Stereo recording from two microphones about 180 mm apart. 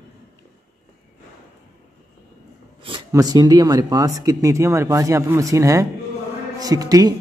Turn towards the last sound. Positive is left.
turn(degrees=-20)  # may be behind; listen again after turning